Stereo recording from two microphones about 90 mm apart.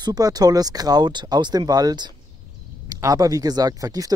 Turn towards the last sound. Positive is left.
turn(degrees=-40)  # may be behind; listen again after turning